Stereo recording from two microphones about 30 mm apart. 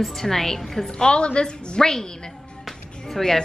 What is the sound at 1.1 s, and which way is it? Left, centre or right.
Speech, left.